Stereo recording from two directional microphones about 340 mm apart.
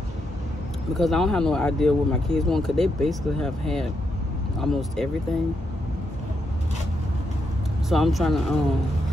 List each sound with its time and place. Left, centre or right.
0.9 s speech: centre
7.9 s speech: centre